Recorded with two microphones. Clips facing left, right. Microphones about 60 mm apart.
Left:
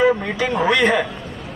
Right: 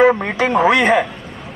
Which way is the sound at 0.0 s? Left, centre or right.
Right.